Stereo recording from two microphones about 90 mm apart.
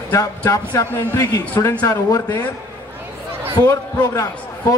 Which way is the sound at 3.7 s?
35° left (ahead or behind).